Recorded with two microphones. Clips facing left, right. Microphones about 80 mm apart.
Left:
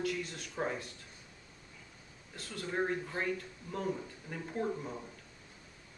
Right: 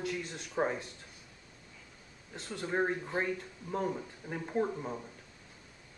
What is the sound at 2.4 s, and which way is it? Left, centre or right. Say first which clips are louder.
Speech: right 3 dB; right.